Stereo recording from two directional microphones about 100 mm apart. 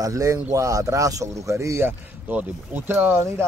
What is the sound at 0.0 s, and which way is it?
Speech, 35° right (ahead or behind).